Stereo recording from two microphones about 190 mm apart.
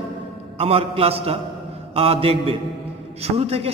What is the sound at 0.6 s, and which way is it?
A man's voice, 30° right (ahead or behind).